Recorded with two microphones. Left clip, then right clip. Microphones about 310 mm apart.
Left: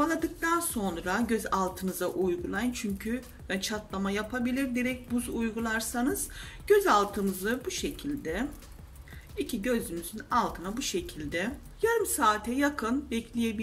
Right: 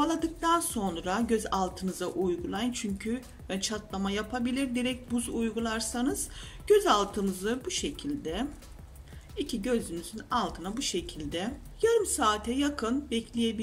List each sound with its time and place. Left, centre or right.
0.0 s speech: centre